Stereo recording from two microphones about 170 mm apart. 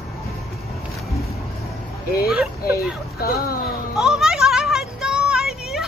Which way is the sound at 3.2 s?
65° left (ahead or behind).